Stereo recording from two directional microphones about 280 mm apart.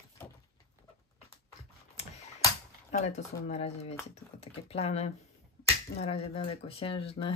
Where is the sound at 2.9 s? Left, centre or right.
Left.